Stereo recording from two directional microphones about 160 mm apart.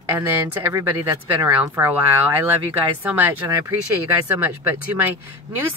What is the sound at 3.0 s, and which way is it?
Speech, 10° right (ahead or behind).